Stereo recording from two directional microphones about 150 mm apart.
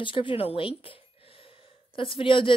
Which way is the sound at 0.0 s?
35° left (ahead or behind).